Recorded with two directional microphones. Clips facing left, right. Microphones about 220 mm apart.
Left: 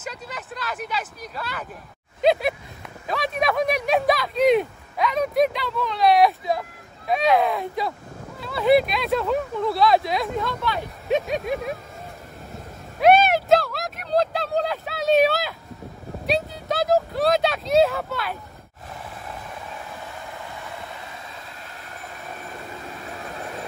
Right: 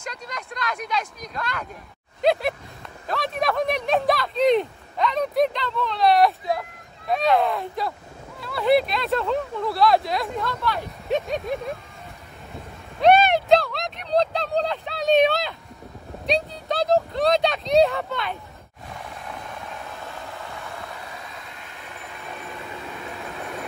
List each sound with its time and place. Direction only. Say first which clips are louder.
0.0 s speech: left 1 dB; 5° left (ahead or behind)
3.1 s a sound: left 1 dB; centre (ahead or behind)
8.6 s speech: left 2 dB; 15° left (ahead or behind)
9.8 s speech: even; 20° left (ahead or behind)
10.4 s speech: even; centre (ahead or behind)
13.0 s a sound: even; centre (ahead or behind)